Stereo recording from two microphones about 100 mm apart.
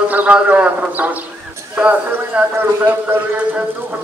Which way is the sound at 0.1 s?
15° right (ahead or behind).